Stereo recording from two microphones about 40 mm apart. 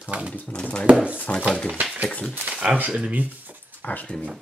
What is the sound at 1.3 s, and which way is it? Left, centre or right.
Speech, left.